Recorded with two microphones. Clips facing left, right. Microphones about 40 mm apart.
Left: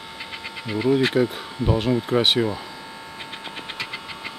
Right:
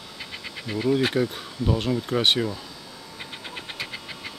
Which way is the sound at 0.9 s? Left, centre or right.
Centre.